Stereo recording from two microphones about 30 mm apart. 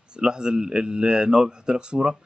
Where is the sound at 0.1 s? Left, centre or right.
Right.